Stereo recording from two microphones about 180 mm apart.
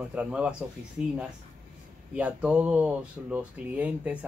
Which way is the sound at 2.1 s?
5° right (ahead or behind).